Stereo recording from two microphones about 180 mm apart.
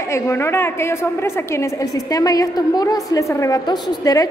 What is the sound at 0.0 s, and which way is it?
A woman's voice, 15° left (ahead or behind).